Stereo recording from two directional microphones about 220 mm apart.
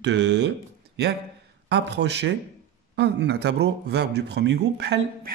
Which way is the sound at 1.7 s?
50° right (ahead or behind).